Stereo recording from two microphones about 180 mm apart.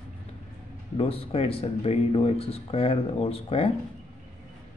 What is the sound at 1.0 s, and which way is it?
Speech, 30° left (ahead or behind).